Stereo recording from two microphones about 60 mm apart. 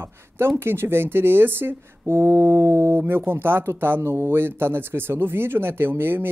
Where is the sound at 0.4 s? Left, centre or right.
Right.